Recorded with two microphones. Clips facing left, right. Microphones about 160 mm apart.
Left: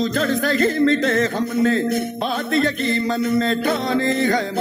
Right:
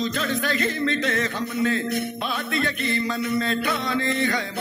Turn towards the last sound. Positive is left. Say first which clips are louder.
# left 5 dB
turn(degrees=45)  # may be behind; listen again after turning